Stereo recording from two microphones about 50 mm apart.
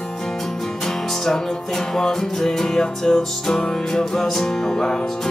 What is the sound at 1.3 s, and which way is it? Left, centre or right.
Music, centre.